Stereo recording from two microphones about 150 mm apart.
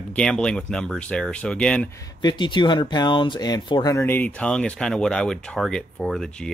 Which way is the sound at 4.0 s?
10° left (ahead or behind).